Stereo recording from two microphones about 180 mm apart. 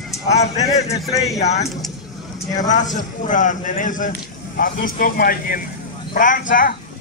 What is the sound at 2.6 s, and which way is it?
A man's voice, 45° left (ahead or behind).